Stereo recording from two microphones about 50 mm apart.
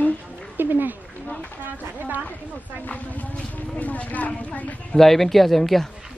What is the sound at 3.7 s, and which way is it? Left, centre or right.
A woman's voice, left.